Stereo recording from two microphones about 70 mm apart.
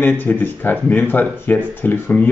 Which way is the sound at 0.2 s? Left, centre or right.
Left.